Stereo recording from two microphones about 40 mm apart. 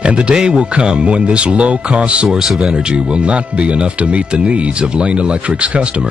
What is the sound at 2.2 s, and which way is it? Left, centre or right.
Speech, centre.